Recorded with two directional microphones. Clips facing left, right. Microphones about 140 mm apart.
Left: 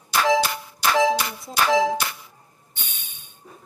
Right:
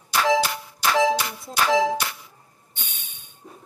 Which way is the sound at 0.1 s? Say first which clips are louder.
Left 1 dB; 50° left (ahead or behind).